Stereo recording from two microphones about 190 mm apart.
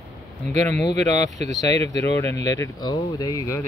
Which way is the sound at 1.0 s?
40° right (ahead or behind).